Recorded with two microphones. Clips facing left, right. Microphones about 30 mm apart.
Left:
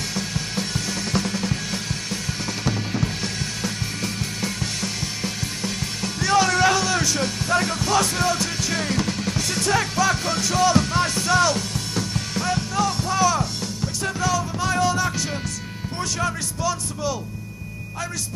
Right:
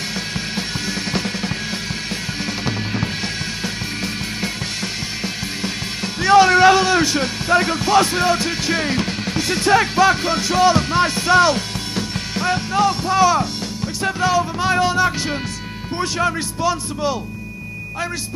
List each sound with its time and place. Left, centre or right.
6.2 s speech: right
14.0 s music: right